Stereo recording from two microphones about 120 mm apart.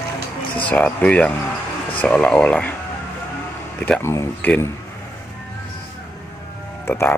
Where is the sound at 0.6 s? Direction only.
10° left (ahead or behind).